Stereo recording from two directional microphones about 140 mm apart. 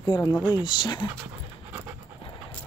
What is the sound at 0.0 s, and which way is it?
Speech, 30° left (ahead or behind).